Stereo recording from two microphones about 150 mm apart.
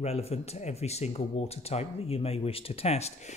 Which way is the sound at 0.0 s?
45° left (ahead or behind).